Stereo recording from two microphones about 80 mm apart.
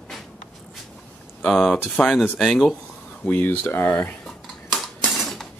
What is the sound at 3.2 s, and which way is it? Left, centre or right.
Speech, left.